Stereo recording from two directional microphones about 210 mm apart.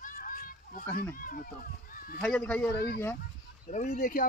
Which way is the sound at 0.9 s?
40° left (ahead or behind).